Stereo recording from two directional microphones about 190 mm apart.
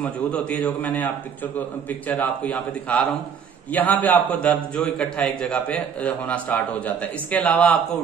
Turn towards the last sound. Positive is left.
turn(degrees=5)  # may be behind; listen again after turning